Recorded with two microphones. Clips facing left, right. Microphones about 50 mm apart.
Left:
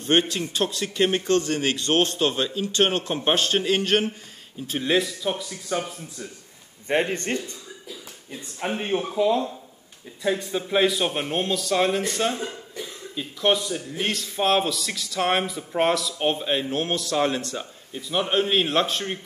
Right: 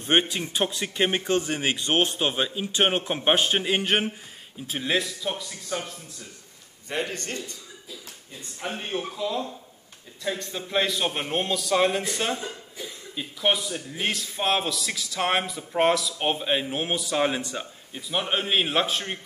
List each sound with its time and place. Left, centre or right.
0.0 s a man's voice: centre
4.6 s speech: centre
6.9 s a man's voice: left
8.5 s speech: left
10.2 s speech: centre